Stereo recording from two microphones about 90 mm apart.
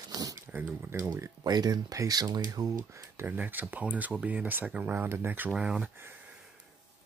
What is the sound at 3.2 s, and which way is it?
Speech, 20° right (ahead or behind).